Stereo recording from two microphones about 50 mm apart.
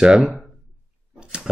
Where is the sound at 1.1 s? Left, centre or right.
Centre.